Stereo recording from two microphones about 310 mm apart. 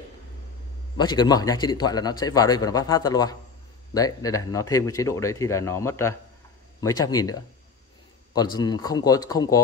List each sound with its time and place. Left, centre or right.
0.9 s a man's voice: centre